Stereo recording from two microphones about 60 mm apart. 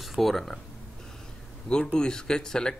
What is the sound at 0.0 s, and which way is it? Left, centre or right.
Speech, centre.